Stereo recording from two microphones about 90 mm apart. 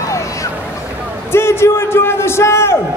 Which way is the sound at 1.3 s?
25° left (ahead or behind).